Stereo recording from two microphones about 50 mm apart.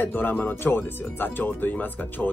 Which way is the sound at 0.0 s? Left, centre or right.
Left.